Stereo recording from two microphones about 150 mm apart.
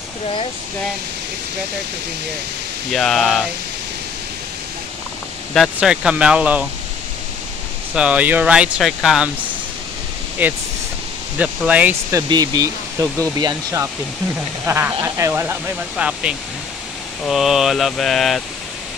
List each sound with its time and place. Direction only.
2.9 s speech: 5° left (ahead or behind)
5.5 s speech: centre (ahead or behind)
7.9 s speech: 10° right (ahead or behind)
10.4 s speech: 10° right (ahead or behind)
16.0 s speech: 5° right (ahead or behind)